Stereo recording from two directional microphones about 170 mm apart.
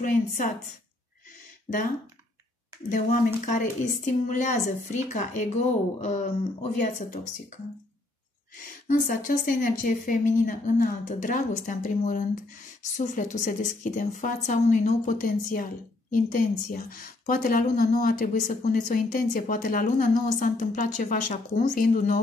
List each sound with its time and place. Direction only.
0.0 s a woman's voice: 50° left (ahead or behind)
3.4 s a woman's voice: 50° left (ahead or behind)
8.6 s a woman's voice: 50° left (ahead or behind)